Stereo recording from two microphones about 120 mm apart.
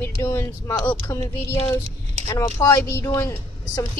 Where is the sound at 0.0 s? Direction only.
20° left (ahead or behind).